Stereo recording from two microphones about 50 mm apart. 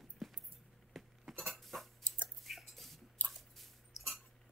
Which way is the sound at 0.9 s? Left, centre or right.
Centre.